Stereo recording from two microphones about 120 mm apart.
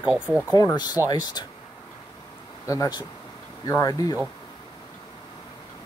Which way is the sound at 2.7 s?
30° left (ahead or behind).